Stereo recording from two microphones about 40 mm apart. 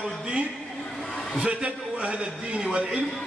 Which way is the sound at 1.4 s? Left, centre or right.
Right.